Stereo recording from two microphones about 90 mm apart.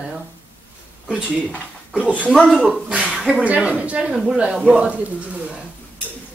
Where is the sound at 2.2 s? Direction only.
15° left (ahead or behind).